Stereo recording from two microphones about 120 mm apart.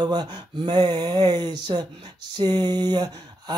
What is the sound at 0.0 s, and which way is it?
Speech, 40° right (ahead or behind).